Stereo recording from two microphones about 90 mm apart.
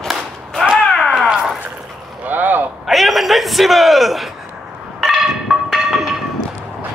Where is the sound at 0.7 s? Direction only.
5° left (ahead or behind).